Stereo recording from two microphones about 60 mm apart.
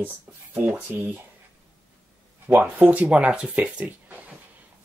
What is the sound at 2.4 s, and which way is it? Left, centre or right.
Speech, right.